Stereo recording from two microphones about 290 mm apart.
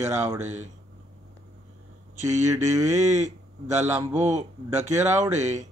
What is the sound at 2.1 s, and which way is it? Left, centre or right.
A man's voice, right.